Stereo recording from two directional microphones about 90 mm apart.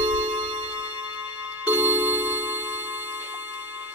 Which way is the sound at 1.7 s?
20° right (ahead or behind).